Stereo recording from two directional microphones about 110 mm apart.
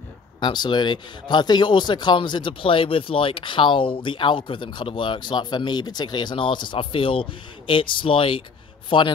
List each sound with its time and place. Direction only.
0.4 s speech: 45° left (ahead or behind)